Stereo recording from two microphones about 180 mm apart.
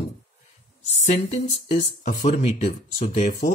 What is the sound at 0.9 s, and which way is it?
Speech, 35° left (ahead or behind).